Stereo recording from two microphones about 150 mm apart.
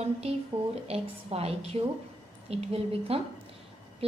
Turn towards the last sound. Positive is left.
turn(degrees=-40)  # may be behind; listen again after turning